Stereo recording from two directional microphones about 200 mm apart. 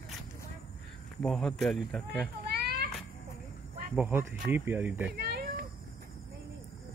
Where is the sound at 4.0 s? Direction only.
10° right (ahead or behind).